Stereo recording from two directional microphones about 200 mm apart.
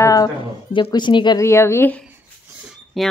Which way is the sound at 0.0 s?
15° left (ahead or behind).